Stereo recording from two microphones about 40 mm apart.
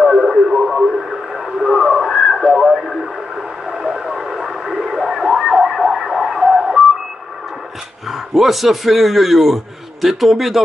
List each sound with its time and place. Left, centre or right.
0.0 s radio: centre
3.8 s radio: centre
8.1 s speech: centre